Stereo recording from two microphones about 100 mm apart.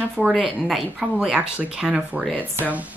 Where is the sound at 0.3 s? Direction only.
Centre (ahead or behind); by 2.8 s 15° right (ahead or behind).